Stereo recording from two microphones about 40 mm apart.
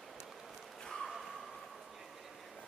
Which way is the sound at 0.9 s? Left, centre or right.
Centre.